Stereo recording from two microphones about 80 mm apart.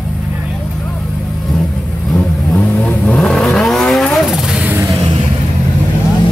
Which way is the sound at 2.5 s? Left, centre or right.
Centre.